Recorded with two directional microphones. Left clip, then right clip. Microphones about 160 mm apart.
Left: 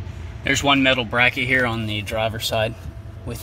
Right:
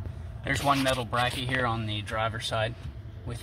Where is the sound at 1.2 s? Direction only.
20° left (ahead or behind).